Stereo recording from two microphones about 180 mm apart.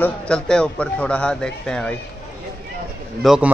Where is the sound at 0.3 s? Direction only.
5° left (ahead or behind).